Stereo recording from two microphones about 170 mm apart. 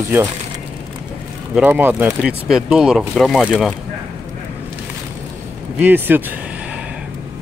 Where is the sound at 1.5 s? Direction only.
10° right (ahead or behind).